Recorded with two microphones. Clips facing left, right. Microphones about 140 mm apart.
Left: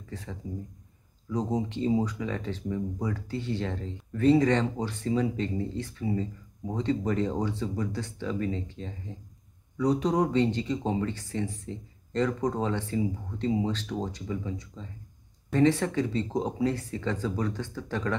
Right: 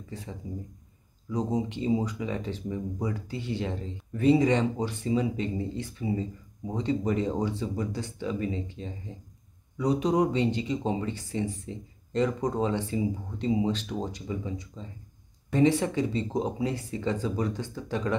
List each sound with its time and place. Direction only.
0.1 s speech: 10° right (ahead or behind)